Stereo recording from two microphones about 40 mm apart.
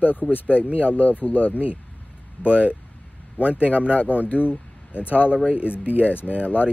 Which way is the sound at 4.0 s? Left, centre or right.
Left.